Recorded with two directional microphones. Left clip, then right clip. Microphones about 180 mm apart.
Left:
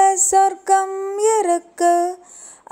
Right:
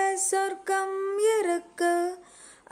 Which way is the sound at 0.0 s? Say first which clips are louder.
Left 12 dB; 10° left (ahead or behind).